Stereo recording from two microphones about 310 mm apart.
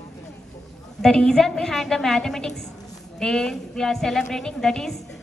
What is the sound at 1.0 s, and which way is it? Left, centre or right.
A woman's voice, centre.